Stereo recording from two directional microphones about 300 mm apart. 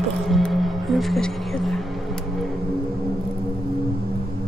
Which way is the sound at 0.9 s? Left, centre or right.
Centre.